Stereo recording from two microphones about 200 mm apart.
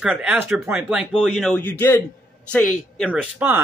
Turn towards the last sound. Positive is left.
turn(degrees=-10)  # may be behind; listen again after turning